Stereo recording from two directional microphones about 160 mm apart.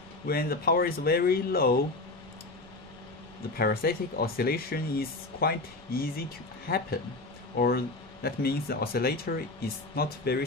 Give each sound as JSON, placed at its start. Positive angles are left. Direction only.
{"t": 0.3, "sound": "speech", "side_deg": 70}
{"t": 3.5, "sound": "speech", "side_deg": 75}